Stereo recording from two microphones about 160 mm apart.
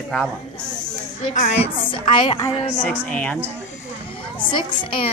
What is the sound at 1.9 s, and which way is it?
Speech, 30° left (ahead or behind).